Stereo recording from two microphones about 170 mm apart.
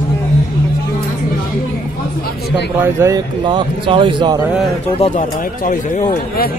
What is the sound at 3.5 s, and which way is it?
Speech, 30° right (ahead or behind).